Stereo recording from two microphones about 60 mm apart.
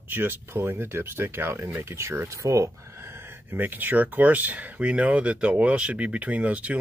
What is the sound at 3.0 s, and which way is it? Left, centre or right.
Speech, right.